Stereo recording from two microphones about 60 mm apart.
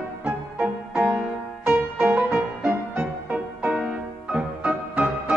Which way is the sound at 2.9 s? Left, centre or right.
Right.